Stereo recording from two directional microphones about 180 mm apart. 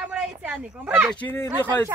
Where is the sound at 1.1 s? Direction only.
10° left (ahead or behind).